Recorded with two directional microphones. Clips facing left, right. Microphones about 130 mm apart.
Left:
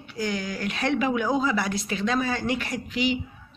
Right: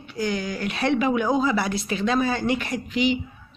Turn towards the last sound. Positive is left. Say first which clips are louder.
# right 3 dB
turn(degrees=5)  # may be behind; listen again after turning